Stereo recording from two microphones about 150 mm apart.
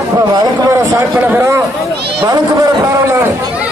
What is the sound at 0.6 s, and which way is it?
A man's voice, 15° right (ahead or behind).